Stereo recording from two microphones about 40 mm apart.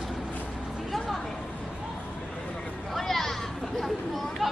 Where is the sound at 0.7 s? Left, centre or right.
Centre.